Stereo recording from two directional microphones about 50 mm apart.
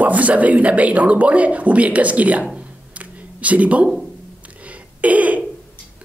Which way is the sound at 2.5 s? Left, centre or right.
Right.